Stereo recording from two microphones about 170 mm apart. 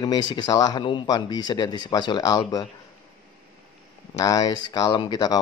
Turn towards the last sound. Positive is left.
turn(degrees=25)  # may be behind; listen again after turning